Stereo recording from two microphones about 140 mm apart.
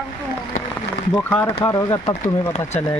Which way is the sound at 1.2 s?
10° left (ahead or behind).